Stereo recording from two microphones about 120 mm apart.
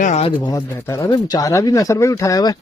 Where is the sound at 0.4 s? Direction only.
30° left (ahead or behind).